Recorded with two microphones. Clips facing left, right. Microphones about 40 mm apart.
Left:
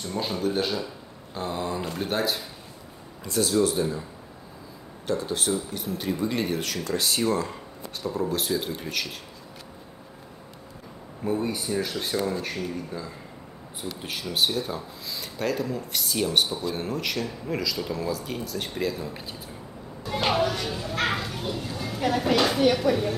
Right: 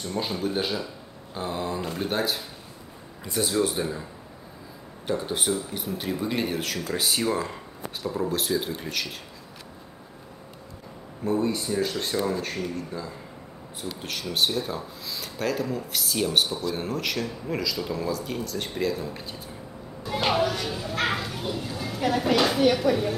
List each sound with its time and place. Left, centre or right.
0.0 s a man's voice: centre
3.3 s speech: centre
5.0 s a man's voice: centre
11.2 s a man's voice: centre
16.4 s a man's voice: centre
20.1 s bow-wow: centre